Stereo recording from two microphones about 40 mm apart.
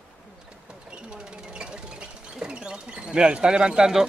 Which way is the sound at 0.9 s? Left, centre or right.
Right.